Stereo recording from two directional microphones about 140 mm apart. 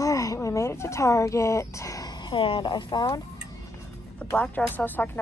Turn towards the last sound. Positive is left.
turn(degrees=15)  # may be behind; listen again after turning